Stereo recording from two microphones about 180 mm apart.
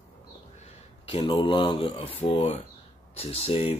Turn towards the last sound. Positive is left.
turn(degrees=30)  # may be behind; listen again after turning